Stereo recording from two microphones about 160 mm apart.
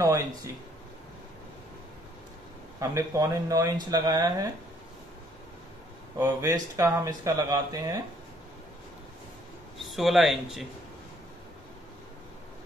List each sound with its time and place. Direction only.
0.0 s speech: 20° right (ahead or behind)
2.8 s speech: 20° right (ahead or behind)
6.1 s speech: 20° right (ahead or behind)
9.8 s speech: centre (ahead or behind)